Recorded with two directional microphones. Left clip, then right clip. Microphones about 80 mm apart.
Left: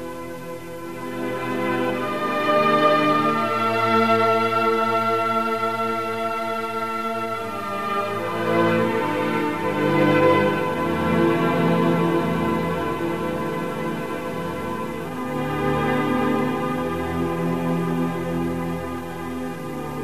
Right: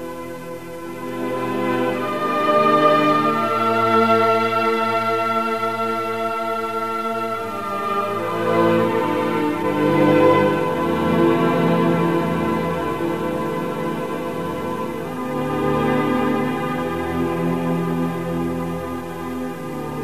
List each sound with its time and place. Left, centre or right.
1.6 s music: left
7.9 s music: left
15.5 s music: left